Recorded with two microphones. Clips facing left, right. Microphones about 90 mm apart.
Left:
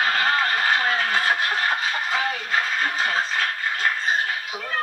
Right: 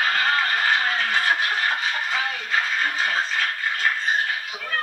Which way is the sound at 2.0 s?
30° left (ahead or behind).